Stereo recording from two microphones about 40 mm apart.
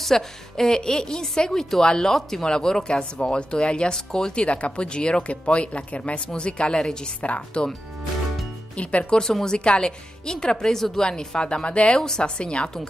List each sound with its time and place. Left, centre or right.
0.0 s a woman's voice: centre
4.5 s speech: left
9.1 s speech: centre
12.0 s speech: centre